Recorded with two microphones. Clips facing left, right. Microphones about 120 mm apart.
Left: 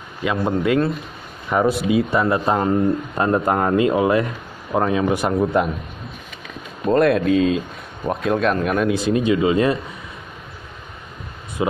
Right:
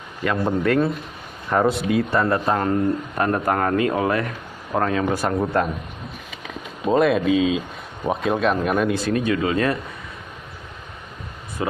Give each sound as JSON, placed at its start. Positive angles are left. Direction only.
{"t": 0.2, "sound": "a man's voice", "side_deg": 10}
{"t": 6.9, "sound": "speech", "side_deg": 0}
{"t": 8.9, "sound": "speech", "side_deg": 20}